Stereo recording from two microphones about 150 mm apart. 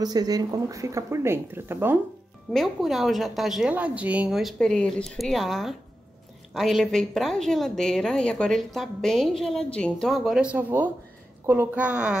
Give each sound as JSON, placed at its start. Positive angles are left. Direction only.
{"t": 0.0, "sound": "speech", "side_deg": -25}
{"t": 2.5, "sound": "a woman's voice", "side_deg": 0}